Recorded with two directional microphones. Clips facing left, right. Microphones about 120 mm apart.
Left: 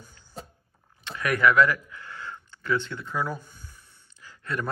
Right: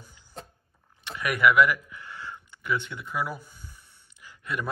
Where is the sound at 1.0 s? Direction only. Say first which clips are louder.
Left 1 dB; 15° right (ahead or behind).